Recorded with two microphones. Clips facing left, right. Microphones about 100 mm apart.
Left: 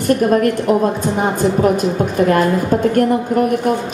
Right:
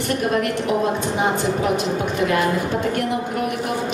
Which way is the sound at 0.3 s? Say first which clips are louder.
Left 7 dB; 45° left (ahead or behind).